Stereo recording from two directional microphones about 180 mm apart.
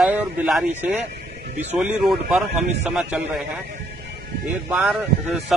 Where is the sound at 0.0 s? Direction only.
5° right (ahead or behind).